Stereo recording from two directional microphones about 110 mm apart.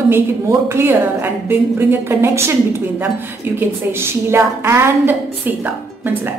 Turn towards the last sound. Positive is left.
turn(degrees=-15)  # may be behind; listen again after turning